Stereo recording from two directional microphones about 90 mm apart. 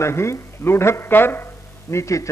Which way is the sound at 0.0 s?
30° left (ahead or behind).